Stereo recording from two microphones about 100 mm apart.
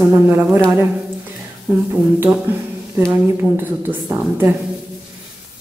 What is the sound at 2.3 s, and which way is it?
A woman's voice, 15° right (ahead or behind).